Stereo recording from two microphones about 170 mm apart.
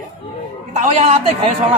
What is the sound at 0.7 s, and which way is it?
Speech, 40° right (ahead or behind).